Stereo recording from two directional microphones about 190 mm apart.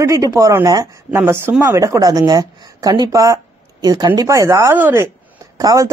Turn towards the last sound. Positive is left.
turn(degrees=-20)  # may be behind; listen again after turning